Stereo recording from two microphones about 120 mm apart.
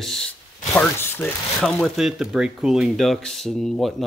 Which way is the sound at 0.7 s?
20° left (ahead or behind).